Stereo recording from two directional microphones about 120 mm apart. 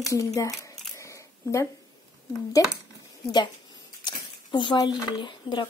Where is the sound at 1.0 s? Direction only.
25° left (ahead or behind).